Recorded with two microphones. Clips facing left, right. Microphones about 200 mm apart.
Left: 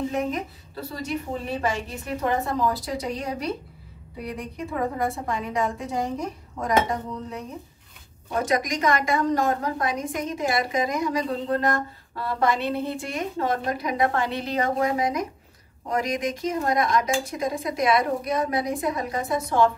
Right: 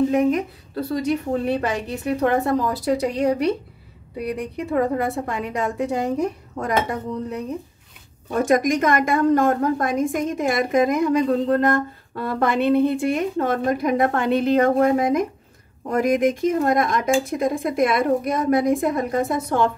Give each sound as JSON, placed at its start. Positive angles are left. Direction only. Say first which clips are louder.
{"t": 0.8, "sound": "a woman's voice", "louder": "right 7 dB", "side_deg": -60}
{"t": 8.5, "sound": "speech", "louder": "right 6 dB", "side_deg": -50}